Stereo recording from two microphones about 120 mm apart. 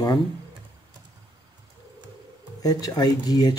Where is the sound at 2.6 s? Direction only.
30° left (ahead or behind).